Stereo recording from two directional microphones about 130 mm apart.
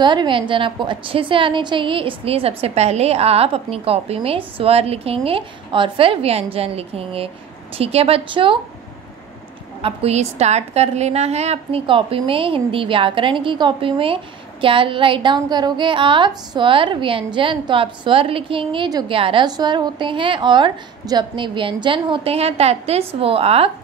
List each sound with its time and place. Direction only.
0.0 s a woman's voice: 35° right (ahead or behind)
9.8 s a woman's voice: 50° right (ahead or behind)